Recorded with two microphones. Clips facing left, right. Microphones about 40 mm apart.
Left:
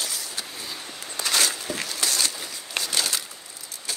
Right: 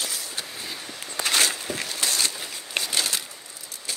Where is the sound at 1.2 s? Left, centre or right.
Right.